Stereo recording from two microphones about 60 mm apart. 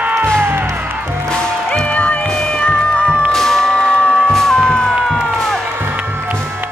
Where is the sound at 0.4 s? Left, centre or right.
Right.